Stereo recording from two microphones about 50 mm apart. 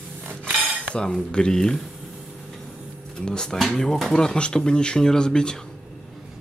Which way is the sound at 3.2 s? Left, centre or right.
Centre.